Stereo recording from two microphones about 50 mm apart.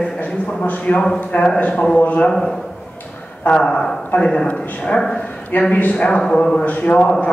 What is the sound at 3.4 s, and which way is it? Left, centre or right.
Speech, centre.